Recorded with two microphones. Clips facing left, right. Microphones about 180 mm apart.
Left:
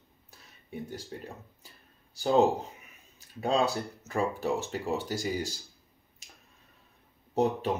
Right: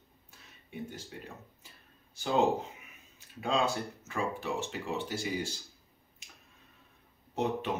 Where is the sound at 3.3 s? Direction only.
35° left (ahead or behind).